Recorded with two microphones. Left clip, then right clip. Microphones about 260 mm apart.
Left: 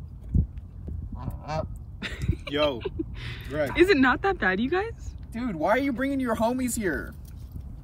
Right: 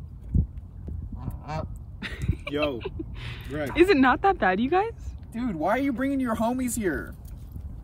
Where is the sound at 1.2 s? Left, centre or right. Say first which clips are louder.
Left 3 dB; centre.